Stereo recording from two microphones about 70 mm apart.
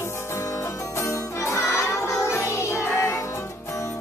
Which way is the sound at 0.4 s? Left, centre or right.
Left.